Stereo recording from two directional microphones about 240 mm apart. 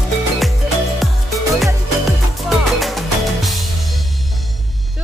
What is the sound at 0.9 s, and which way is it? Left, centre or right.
Music, centre.